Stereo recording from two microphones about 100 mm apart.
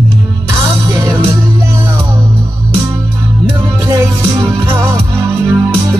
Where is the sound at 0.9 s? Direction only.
35° right (ahead or behind).